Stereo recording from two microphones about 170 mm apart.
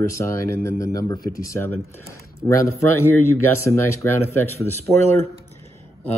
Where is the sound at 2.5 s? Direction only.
15° left (ahead or behind).